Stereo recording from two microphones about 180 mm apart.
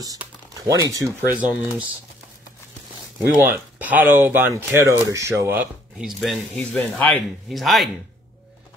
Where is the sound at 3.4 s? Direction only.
10° right (ahead or behind).